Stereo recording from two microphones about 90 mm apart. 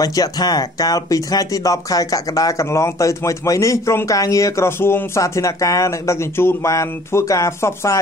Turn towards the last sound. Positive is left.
turn(degrees=35)  # may be behind; listen again after turning